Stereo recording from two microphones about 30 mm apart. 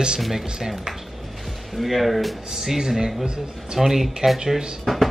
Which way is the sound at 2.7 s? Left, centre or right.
Centre.